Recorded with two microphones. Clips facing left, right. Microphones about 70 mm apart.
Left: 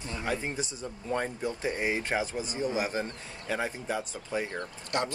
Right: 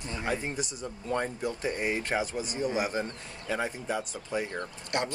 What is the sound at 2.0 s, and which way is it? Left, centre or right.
Speech, left.